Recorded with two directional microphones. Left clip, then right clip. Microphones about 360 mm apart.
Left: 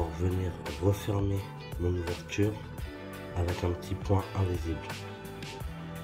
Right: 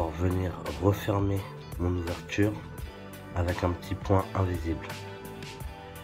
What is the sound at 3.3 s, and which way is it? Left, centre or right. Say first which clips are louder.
Speech: right 4 dB; centre.